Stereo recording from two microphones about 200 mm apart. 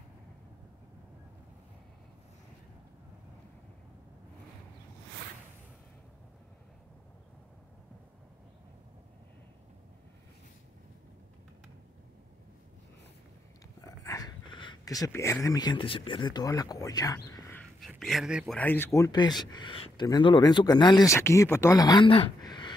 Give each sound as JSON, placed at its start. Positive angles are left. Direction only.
{"t": 13.7, "sound": "speech", "side_deg": 15}
{"t": 17.7, "sound": "a man's voice", "side_deg": 0}
{"t": 18.6, "sound": "speech", "side_deg": 10}